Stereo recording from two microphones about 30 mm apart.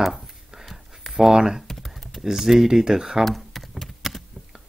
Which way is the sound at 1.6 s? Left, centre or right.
Centre.